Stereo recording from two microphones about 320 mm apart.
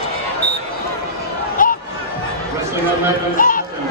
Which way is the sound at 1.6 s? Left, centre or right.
Left.